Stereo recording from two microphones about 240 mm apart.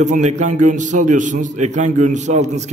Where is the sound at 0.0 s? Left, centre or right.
Right.